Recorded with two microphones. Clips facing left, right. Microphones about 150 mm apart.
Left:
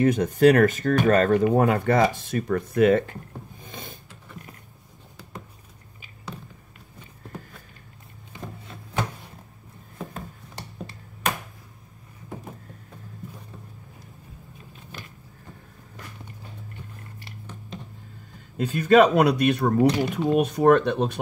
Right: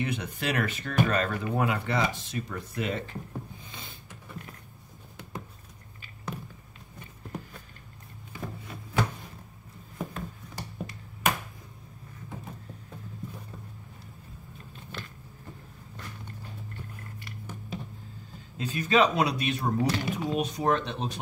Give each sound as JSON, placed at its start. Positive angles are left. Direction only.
{"t": 0.0, "sound": "speech", "side_deg": 45}
{"t": 3.6, "sound": "a sound", "side_deg": 45}
{"t": 18.6, "sound": "speech", "side_deg": 55}